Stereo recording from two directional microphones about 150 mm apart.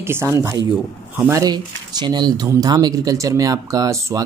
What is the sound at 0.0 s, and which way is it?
Speech, 15° right (ahead or behind).